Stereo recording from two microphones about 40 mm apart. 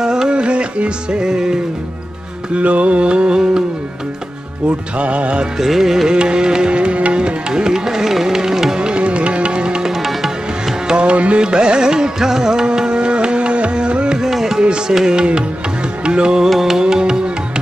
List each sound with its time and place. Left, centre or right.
0.0 s music: centre
2.5 s music: right
4.9 s music: right
5.6 s music: centre
6.1 s music: right
8.7 s music: right
9.9 s music: centre
10.9 s music: right; by 14.6 s centre
14.6 s music: right
16.4 s music: centre
16.8 s music: centre